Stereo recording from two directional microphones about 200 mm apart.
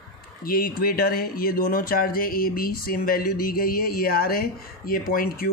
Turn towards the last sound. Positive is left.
turn(degrees=45)  # may be behind; listen again after turning